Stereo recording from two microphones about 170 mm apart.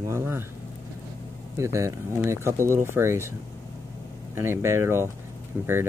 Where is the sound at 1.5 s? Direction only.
15° right (ahead or behind).